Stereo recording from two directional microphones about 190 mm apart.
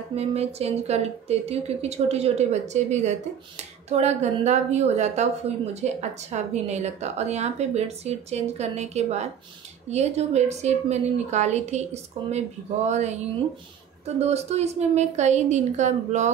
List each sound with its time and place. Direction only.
0.1 s speech: 35° right (ahead or behind)